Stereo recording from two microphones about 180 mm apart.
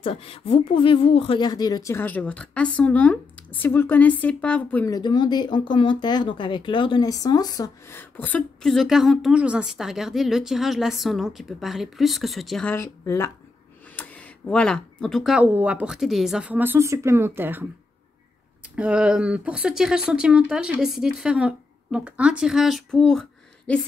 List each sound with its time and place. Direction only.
0.0 s speech: 30° left (ahead or behind); by 4.9 s 10° left (ahead or behind)
4.9 s speech: 25° left (ahead or behind); by 12.7 s centre (ahead or behind)
12.7 s speech: 15° left (ahead or behind); by 17.6 s 10° right (ahead or behind)
18.8 s speech: 5° right (ahead or behind)